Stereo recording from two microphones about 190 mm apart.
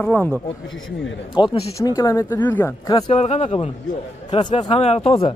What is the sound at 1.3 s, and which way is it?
Speech, 25° left (ahead or behind).